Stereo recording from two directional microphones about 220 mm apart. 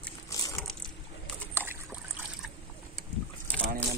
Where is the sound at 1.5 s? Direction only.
5° right (ahead or behind).